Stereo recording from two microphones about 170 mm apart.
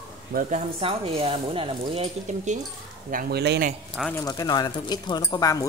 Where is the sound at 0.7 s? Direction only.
35° right (ahead or behind).